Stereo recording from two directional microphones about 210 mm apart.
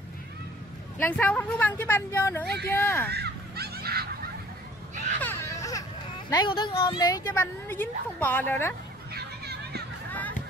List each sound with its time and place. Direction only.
0.9 s a woman's voice: 10° left (ahead or behind)
3.1 s fowl: 50° right (ahead or behind)
5.2 s baby cry: 10° left (ahead or behind)
6.3 s a woman's voice: 25° left (ahead or behind)
9.1 s a sound: 50° right (ahead or behind)